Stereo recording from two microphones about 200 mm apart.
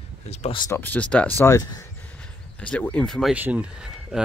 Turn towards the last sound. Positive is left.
turn(degrees=-5)  # may be behind; listen again after turning